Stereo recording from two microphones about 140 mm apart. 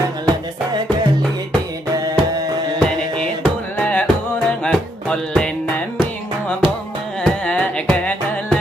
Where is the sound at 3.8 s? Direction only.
10° left (ahead or behind).